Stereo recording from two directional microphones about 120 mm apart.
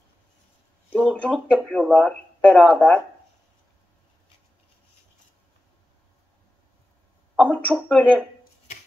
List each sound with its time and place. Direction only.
0.8 s speech: 10° left (ahead or behind)
7.3 s a sound: 10° left (ahead or behind)
7.7 s speech: 5° left (ahead or behind)